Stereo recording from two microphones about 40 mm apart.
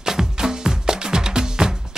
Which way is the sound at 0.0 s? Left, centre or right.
Centre.